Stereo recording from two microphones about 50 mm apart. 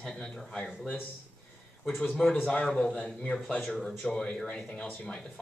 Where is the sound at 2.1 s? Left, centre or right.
Centre.